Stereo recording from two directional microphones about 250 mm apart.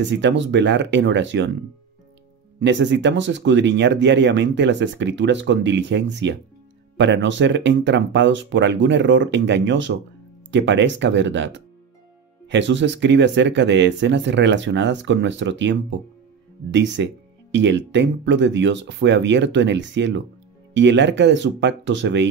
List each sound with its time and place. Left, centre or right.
0.1 s speech: right
2.6 s speech: right